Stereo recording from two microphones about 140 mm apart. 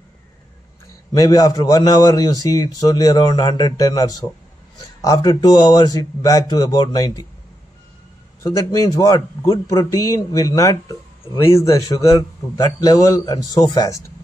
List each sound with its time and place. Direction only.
1.1 s a man's voice: 25° left (ahead or behind)
8.4 s a man's voice: 25° left (ahead or behind)